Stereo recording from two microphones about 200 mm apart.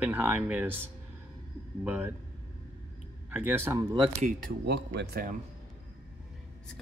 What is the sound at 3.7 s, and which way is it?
Speech, 20° right (ahead or behind).